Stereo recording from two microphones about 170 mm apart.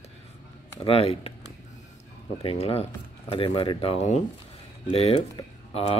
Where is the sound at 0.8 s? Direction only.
35° left (ahead or behind).